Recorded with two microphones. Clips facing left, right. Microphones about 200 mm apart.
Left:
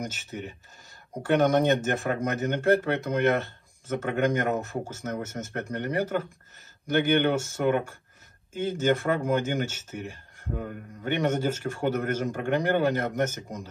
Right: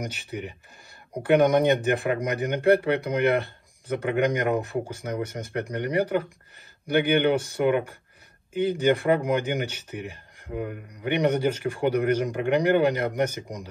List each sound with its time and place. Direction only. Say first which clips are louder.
0.0 s speech: right 2 dB; 15° right (ahead or behind)